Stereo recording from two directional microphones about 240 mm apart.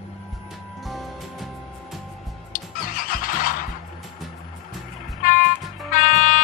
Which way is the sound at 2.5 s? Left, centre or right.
Left.